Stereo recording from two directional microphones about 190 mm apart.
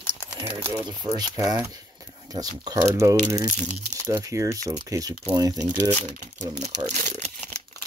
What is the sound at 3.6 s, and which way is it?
Speech, 40° right (ahead or behind).